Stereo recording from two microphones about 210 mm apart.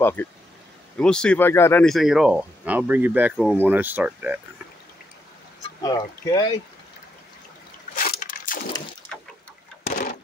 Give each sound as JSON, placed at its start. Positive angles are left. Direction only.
{"t": 0.0, "sound": "speech", "side_deg": 10}
{"t": 5.8, "sound": "speech", "side_deg": 20}
{"t": 7.9, "sound": "a sound", "side_deg": 40}